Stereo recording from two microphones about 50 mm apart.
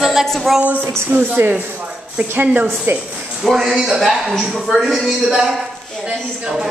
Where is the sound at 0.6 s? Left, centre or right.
Right.